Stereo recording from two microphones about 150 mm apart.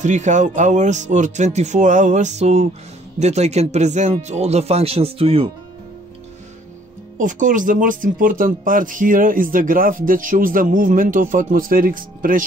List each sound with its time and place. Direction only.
0.0 s speech: 55° right (ahead or behind)
7.2 s speech: 60° right (ahead or behind)